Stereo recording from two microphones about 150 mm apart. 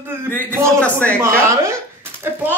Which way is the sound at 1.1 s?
20° right (ahead or behind).